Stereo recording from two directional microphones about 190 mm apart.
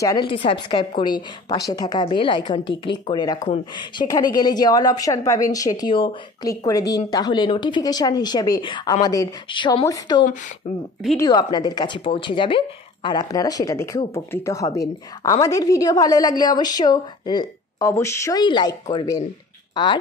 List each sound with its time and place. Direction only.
0.0 s speech: 20° left (ahead or behind)
10.6 s speech: 30° left (ahead or behind)
11.1 s speech: 20° left (ahead or behind)